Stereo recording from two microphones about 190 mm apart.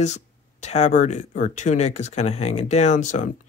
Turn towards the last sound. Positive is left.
turn(degrees=40)  # may be behind; listen again after turning